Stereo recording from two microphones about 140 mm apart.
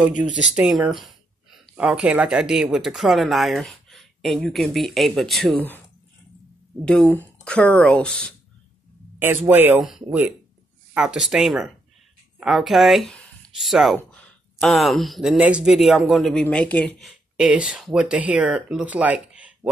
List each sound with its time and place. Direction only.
0.2 s speech: 5° right (ahead or behind)
6.8 s speech: 5° left (ahead or behind)
9.5 s speech: 15° right (ahead or behind)
10.9 s speech: 5° right (ahead or behind)